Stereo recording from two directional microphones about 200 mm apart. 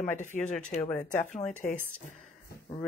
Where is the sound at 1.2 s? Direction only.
35° left (ahead or behind).